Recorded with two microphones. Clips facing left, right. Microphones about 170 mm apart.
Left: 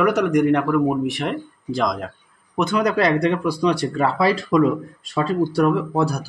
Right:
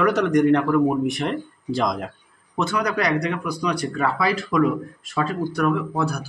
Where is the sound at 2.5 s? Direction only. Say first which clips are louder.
Left 4 dB; 20° left (ahead or behind).